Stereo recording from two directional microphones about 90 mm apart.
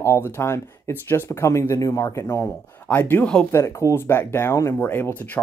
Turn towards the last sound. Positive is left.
turn(degrees=20)  # may be behind; listen again after turning